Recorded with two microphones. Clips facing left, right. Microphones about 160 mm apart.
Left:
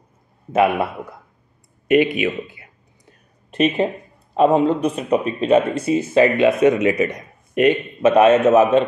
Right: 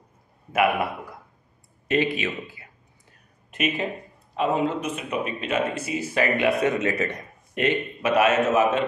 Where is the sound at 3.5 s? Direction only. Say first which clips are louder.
Left 8 dB; 30° left (ahead or behind).